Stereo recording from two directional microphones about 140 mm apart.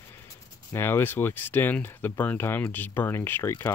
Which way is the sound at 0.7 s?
15° left (ahead or behind).